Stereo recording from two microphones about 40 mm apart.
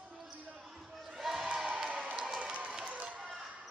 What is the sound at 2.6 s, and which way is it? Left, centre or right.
Run, right.